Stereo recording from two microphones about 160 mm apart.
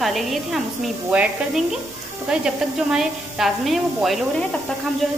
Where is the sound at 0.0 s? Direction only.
Centre (ahead or behind).